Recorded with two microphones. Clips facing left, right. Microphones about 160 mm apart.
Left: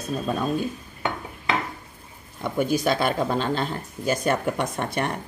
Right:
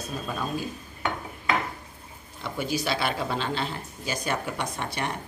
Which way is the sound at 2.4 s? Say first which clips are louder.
Left 6 dB; 50° left (ahead or behind).